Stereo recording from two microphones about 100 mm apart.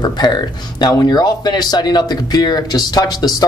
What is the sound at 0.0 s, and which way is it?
Speech, 45° left (ahead or behind).